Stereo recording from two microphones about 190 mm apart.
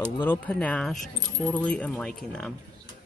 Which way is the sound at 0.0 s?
10° left (ahead or behind).